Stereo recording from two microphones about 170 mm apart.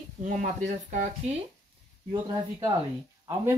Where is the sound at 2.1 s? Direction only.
25° right (ahead or behind).